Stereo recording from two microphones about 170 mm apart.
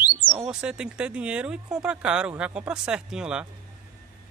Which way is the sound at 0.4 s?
5° right (ahead or behind).